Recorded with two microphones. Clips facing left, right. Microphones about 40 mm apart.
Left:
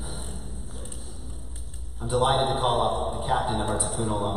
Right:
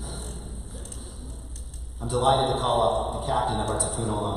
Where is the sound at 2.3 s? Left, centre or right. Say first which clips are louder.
Right 5 dB; centre.